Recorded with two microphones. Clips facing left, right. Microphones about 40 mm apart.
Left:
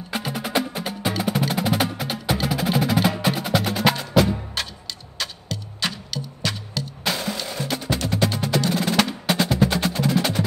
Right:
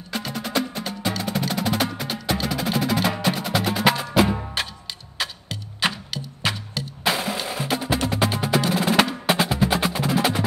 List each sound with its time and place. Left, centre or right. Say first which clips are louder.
0.1 s percussion: left 1 dB; centre
2.2 s music: left 2 dB; centre